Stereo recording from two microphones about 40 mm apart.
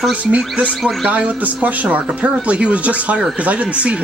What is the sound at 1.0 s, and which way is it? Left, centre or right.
Speech, right.